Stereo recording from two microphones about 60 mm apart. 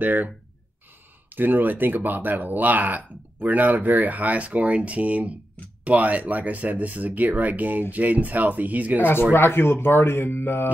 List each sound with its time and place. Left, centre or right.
0.0 s speech: right
1.3 s speech: right
9.0 s speech: left